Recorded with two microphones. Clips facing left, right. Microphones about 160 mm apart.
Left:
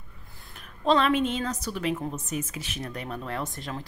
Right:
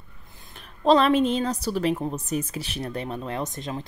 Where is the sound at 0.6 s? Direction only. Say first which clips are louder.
Right 4 dB; 35° right (ahead or behind).